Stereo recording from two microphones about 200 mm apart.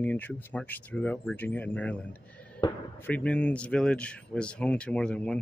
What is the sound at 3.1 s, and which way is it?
Speech, 5° left (ahead or behind).